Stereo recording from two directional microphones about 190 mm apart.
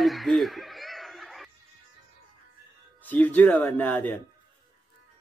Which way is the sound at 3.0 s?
10° left (ahead or behind).